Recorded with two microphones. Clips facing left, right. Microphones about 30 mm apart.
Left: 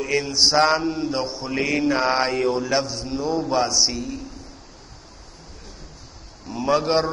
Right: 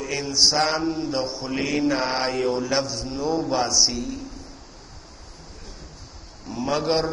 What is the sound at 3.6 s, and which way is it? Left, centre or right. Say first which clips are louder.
Speech: even; centre.